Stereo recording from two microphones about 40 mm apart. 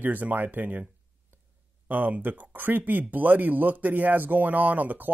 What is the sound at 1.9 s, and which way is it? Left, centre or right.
A man's voice, right.